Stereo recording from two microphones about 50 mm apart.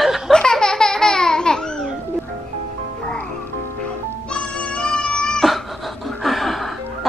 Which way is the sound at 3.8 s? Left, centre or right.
Left.